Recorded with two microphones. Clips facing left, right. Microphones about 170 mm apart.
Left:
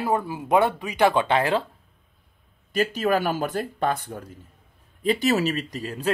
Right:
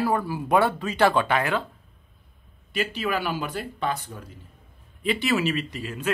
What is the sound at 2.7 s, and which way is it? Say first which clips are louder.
Speech: left 5 dB; 45° left (ahead or behind).